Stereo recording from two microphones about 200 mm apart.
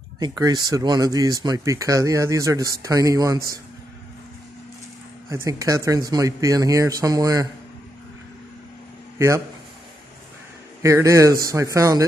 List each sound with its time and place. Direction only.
0.2 s speech: 20° right (ahead or behind)
5.3 s speech: 15° right (ahead or behind)
10.8 s speech: 15° right (ahead or behind)